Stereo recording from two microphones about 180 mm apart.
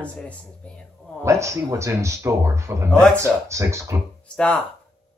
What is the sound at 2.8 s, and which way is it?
Speech, 5° left (ahead or behind).